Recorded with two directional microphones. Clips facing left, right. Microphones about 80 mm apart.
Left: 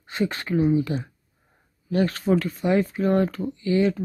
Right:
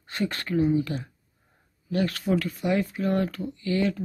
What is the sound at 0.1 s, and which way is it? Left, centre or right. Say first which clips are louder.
Speech: left 3 dB; centre.